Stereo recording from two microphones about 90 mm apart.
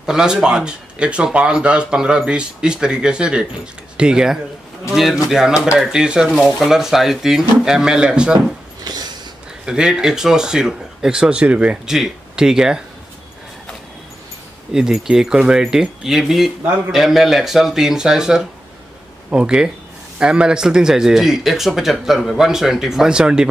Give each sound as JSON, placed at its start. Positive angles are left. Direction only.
{"t": 0.0, "sound": "speech", "side_deg": -5}
{"t": 8.9, "sound": "a sound", "side_deg": -50}
{"t": 9.7, "sound": "speech", "side_deg": -10}
{"t": 14.7, "sound": "speech", "side_deg": -5}